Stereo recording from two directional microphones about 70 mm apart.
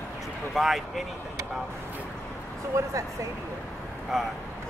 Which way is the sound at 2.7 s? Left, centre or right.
Right.